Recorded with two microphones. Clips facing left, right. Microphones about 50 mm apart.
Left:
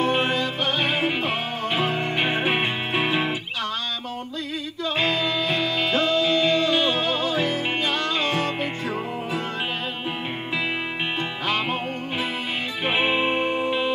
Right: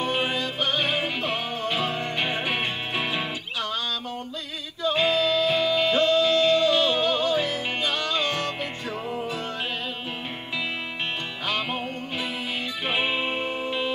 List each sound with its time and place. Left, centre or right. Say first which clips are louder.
0.0 s music: left 4 dB; centre
0.8 s music: left 3 dB; centre
4.9 s music: right 1 dB; centre
11.4 s music: left 2 dB; centre